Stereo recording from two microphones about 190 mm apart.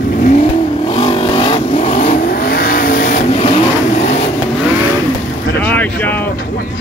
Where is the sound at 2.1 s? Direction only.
50° left (ahead or behind).